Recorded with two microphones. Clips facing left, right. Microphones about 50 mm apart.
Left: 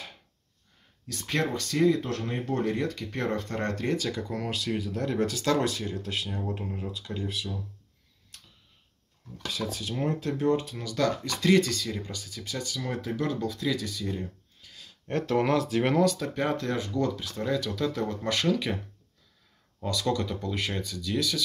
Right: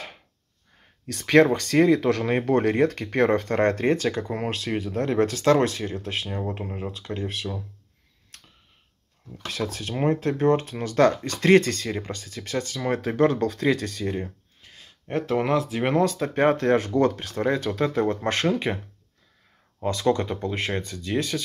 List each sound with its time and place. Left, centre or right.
1.0 s speech: right
9.5 s speech: right
15.0 s speech: centre
16.0 s speech: right
16.3 s speech: right
19.8 s speech: right